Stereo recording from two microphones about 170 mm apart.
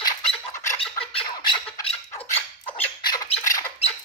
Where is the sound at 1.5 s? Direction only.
35° left (ahead or behind).